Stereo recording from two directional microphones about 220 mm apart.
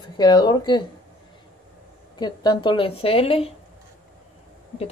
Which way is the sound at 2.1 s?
20° left (ahead or behind).